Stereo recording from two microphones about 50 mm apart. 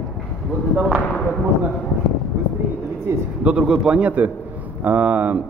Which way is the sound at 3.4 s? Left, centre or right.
Right.